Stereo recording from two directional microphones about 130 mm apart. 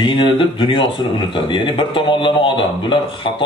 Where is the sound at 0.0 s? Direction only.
40° left (ahead or behind).